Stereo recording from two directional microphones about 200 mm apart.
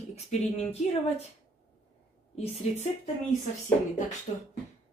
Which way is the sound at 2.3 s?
30° left (ahead or behind).